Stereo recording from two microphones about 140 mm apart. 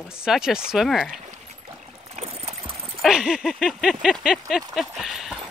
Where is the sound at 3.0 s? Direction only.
5° right (ahead or behind).